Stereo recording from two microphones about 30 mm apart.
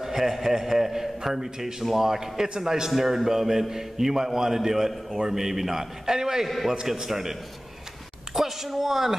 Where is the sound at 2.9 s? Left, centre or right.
Centre.